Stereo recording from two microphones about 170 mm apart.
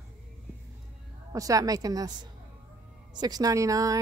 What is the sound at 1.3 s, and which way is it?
A woman's voice, 20° right (ahead or behind).